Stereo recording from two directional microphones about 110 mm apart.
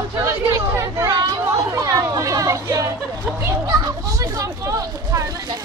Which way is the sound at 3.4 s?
25° right (ahead or behind).